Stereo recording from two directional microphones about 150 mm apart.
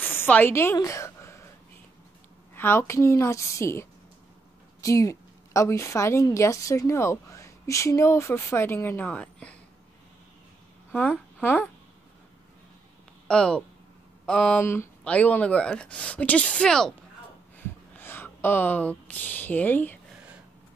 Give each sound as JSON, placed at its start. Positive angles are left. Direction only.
{"t": 0.0, "sound": "a woman's voice", "side_deg": 10}
{"t": 0.7, "sound": "a sound", "side_deg": 20}
{"t": 2.5, "sound": "a woman's voice", "side_deg": 15}
{"t": 4.8, "sound": "a woman's voice", "side_deg": 20}
{"t": 10.9, "sound": "a woman's voice", "side_deg": 10}
{"t": 13.3, "sound": "speech", "side_deg": 5}
{"t": 14.6, "sound": "speech", "side_deg": 15}
{"t": 17.6, "sound": "a sound", "side_deg": 15}